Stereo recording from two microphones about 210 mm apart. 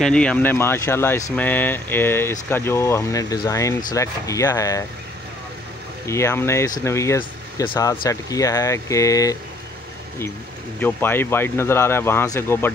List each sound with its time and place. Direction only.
0.0 s speech: 5° left (ahead or behind)
6.0 s speech: 15° left (ahead or behind)
10.8 s speech: 10° left (ahead or behind)